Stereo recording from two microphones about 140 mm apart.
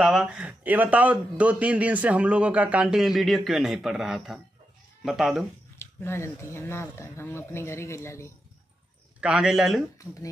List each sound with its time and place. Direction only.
0.0 s a man's voice: 5° right (ahead or behind)
5.8 s speech: 15° left (ahead or behind)
9.2 s a man's voice: 5° right (ahead or behind)
9.9 s speech: 25° left (ahead or behind)